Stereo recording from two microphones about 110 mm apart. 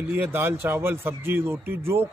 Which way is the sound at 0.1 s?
15° right (ahead or behind).